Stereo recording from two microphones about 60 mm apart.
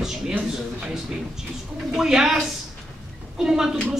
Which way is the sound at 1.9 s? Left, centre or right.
Centre.